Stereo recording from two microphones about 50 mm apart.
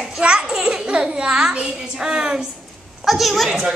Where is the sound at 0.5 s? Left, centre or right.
Centre.